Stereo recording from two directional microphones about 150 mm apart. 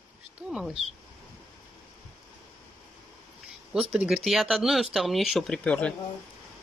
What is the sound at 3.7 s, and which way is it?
Speech, 5° right (ahead or behind).